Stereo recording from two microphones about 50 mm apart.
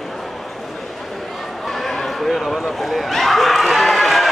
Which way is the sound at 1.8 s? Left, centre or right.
Centre.